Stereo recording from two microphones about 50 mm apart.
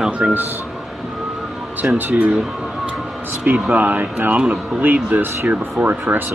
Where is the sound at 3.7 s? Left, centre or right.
Right.